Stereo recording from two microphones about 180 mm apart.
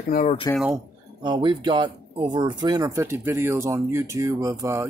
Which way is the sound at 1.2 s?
25° right (ahead or behind).